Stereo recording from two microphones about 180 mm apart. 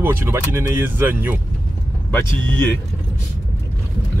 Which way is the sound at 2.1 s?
10° left (ahead or behind).